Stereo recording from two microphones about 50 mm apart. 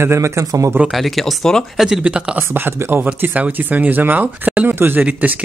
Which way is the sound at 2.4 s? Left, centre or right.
Right.